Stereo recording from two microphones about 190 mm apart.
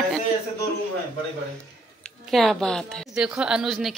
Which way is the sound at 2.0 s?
Centre (ahead or behind).